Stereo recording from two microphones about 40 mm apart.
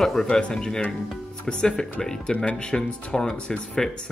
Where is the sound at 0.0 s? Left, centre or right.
Centre.